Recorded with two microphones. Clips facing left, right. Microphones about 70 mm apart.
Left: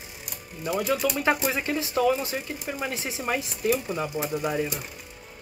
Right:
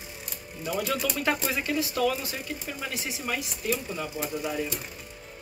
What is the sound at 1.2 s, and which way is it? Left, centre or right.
Speech, centre.